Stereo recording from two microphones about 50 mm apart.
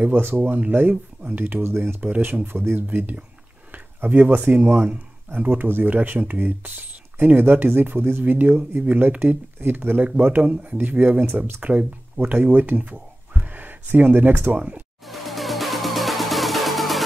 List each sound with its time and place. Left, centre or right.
0.0 s speech: right
1.6 s speech: right
2.0 s speech: right
11.6 s speech: right
15.0 s music: centre